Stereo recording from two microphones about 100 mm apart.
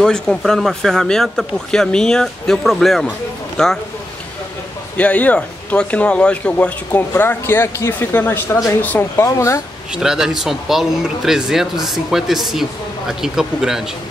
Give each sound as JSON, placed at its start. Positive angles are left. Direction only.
{"t": 0.0, "sound": "speech", "side_deg": 5}
{"t": 4.9, "sound": "speech", "side_deg": 15}
{"t": 9.9, "sound": "speech", "side_deg": -5}